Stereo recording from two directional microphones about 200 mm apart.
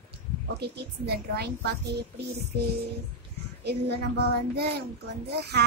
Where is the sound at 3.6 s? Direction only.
55° right (ahead or behind).